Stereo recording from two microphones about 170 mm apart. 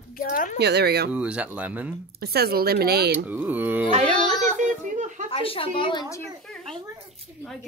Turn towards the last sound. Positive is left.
turn(degrees=20)  # may be behind; listen again after turning